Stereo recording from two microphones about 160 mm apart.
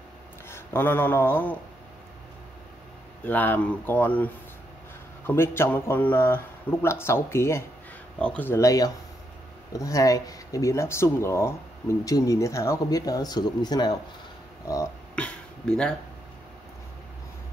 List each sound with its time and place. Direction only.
0.5 s speech: 15° left (ahead or behind)
3.3 s speech: 10° left (ahead or behind); by 13.9 s 25° left (ahead or behind)
15.1 s a sound: 5° left (ahead or behind)